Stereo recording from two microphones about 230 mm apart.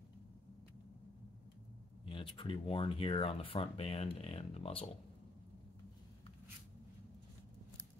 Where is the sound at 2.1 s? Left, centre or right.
Left.